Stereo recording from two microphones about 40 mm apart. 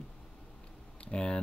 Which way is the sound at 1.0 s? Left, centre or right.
Left.